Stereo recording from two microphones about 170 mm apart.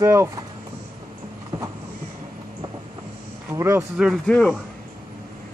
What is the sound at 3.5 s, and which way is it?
Speech, 15° right (ahead or behind).